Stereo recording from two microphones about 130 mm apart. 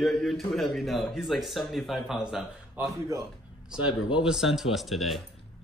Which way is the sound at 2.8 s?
25° right (ahead or behind).